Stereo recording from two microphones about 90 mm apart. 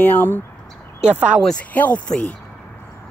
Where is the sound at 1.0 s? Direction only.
10° right (ahead or behind).